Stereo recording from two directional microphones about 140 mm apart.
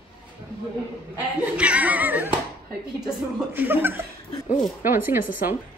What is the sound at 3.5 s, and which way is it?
Chuckle, 15° right (ahead or behind).